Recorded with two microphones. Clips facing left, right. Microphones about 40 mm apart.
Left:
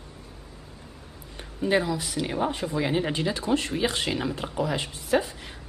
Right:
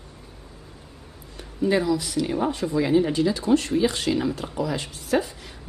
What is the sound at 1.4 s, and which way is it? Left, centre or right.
A woman's voice, left.